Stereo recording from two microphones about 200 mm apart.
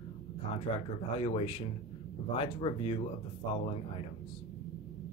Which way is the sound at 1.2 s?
30° left (ahead or behind).